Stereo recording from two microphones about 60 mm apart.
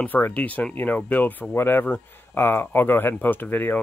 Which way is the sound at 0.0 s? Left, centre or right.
Left.